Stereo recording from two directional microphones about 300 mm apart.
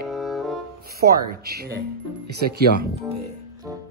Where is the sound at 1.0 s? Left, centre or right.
Right.